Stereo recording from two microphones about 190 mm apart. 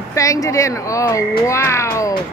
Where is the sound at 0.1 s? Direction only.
15° left (ahead or behind).